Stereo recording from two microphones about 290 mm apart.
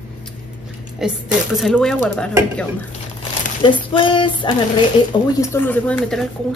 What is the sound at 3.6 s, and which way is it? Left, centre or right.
Female singing, centre.